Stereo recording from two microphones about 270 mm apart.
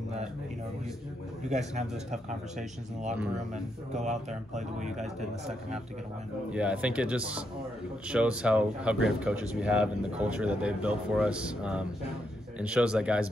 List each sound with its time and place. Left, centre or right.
1.4 s speech: right
3.5 s speech: right
6.5 s speech: centre